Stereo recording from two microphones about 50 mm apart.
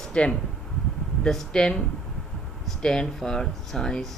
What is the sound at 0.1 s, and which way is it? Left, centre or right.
Speech, left.